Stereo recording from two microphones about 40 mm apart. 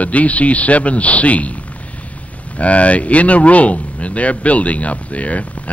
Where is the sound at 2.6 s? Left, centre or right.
Left.